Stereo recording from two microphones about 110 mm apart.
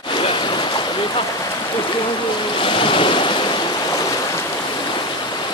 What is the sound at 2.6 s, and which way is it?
Waves, 50° left (ahead or behind).